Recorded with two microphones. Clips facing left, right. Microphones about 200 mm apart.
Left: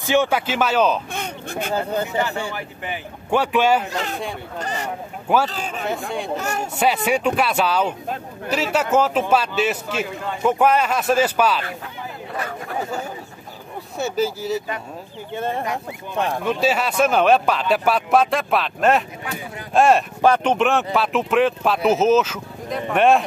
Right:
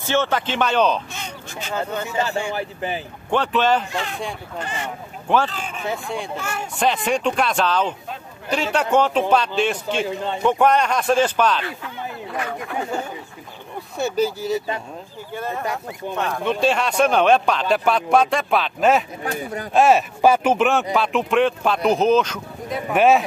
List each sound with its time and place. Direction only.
0.0 s speech: 15° left (ahead or behind)
1.1 s a sound: 55° left (ahead or behind)
1.7 s speech: 35° left (ahead or behind)
2.5 s speech: 30° right (ahead or behind)
3.3 s speech: 10° left (ahead or behind)
3.9 s speech: 40° left (ahead or behind)
5.9 s speech: centre (ahead or behind)
6.3 s speech: 40° left (ahead or behind)
6.8 s speech: 10° left (ahead or behind)
13.9 s speech: centre (ahead or behind)
15.3 s speech: 25° left (ahead or behind)
16.4 s speech: 5° left (ahead or behind)